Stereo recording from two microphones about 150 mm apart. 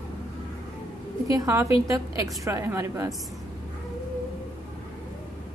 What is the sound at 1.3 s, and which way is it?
A woman's voice, 20° right (ahead or behind).